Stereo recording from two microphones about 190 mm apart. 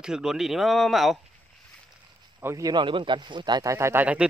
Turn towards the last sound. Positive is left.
turn(degrees=-10)  # may be behind; listen again after turning